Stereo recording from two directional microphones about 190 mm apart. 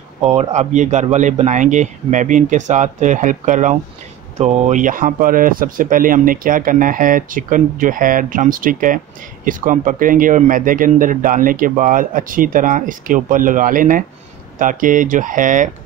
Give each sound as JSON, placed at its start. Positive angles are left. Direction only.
{"t": 0.4, "sound": "speech", "side_deg": -35}